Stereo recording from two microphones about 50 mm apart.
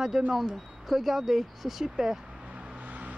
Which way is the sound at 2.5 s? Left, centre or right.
Right.